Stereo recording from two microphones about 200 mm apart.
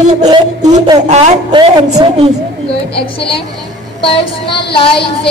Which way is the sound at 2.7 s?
25° left (ahead or behind).